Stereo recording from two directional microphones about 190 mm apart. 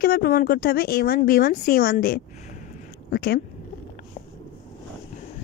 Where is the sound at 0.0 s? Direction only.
55° left (ahead or behind).